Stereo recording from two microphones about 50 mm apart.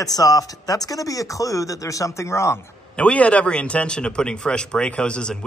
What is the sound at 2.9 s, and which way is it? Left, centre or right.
Speech, left.